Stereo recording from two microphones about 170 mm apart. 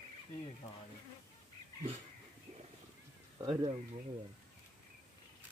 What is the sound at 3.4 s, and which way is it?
Speech, 25° right (ahead or behind).